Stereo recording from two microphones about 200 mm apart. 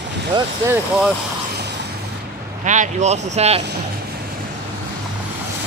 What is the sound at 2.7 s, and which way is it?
Speech, 35° right (ahead or behind).